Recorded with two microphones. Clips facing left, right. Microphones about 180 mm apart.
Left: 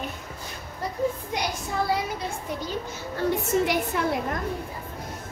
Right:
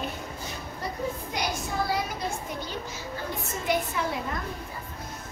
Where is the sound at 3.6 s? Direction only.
70° left (ahead or behind).